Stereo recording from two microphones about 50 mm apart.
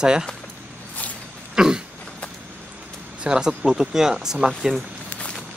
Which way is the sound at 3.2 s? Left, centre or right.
Centre.